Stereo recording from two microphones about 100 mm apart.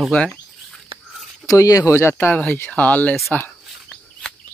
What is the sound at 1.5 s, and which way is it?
Speech, 35° left (ahead or behind).